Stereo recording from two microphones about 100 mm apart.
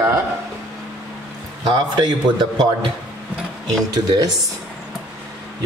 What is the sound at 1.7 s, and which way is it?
Speech, 45° right (ahead or behind).